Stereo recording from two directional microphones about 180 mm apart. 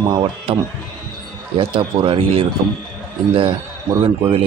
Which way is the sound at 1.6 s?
30° right (ahead or behind).